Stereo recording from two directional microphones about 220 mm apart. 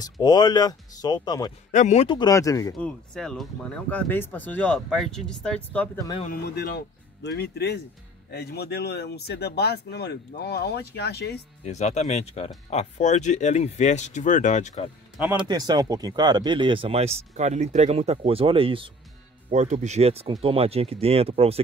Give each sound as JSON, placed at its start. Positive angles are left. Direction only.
{"t": 0.0, "sound": "speech", "side_deg": 20}
{"t": 1.7, "sound": "speech", "side_deg": 35}
{"t": 3.2, "sound": "speech", "side_deg": 5}
{"t": 6.2, "sound": "speech", "side_deg": 45}
{"t": 11.6, "sound": "speech", "side_deg": 30}
{"t": 15.1, "sound": "speech", "side_deg": -5}
{"t": 15.4, "sound": "speech", "side_deg": -20}